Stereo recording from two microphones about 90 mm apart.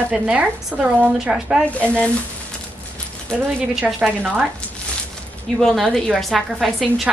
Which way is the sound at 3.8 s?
10° right (ahead or behind).